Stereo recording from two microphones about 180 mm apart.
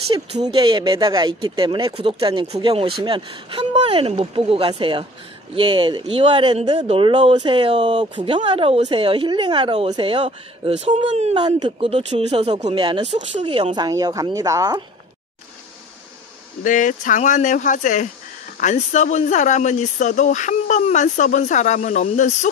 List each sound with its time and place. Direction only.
0.1 s speech: 30° right (ahead or behind)
11.3 s speech: 25° right (ahead or behind)
13.7 s speech: 20° right (ahead or behind)
16.6 s speech: 45° left (ahead or behind)